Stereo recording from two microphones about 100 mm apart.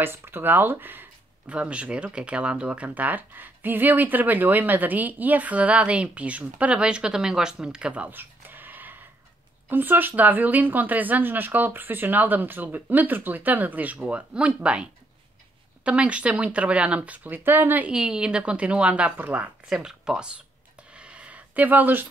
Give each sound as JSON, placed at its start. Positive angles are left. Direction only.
{"t": 0.0, "sound": "speech", "side_deg": -20}
{"t": 19.7, "sound": "speech", "side_deg": -5}
{"t": 20.9, "sound": "a sound", "side_deg": -10}